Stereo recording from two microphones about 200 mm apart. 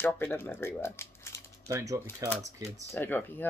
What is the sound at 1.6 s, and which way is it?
Speech, 15° right (ahead or behind).